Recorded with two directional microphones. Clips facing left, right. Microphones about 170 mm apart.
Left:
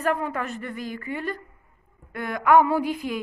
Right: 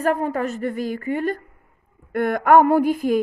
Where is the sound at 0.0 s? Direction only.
40° right (ahead or behind).